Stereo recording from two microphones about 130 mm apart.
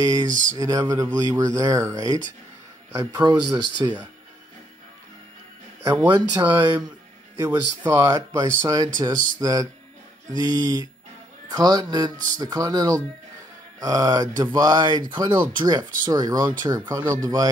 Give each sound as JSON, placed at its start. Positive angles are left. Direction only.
{"t": 0.0, "sound": "speech", "side_deg": -30}
{"t": 5.9, "sound": "speech", "side_deg": -15}